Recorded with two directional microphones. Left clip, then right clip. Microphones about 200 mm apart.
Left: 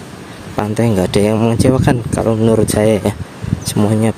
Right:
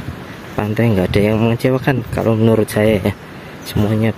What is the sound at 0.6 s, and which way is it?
Speech, 5° left (ahead or behind).